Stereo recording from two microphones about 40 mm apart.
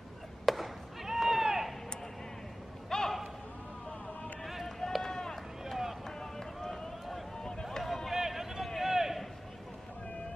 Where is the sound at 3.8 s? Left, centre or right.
Left.